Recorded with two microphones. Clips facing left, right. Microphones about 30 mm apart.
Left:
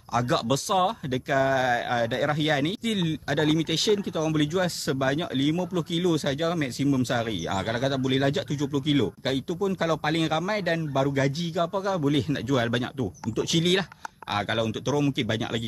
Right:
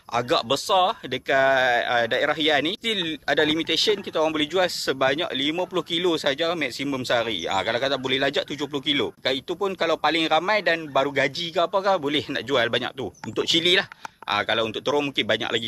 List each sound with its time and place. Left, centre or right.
0.1 s speech: right